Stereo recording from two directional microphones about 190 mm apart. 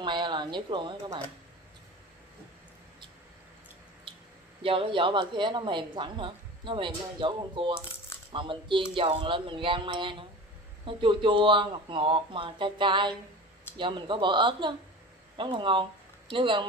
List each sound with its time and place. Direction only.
0.0 s speech: 25° right (ahead or behind)
4.6 s speech: 25° right (ahead or behind)